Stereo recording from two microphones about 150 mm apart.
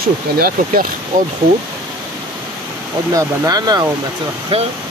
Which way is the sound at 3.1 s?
25° right (ahead or behind).